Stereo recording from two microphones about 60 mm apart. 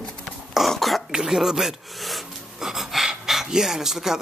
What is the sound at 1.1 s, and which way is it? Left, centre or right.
Gasp, centre.